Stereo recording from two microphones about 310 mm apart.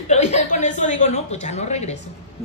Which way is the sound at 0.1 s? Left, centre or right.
Left.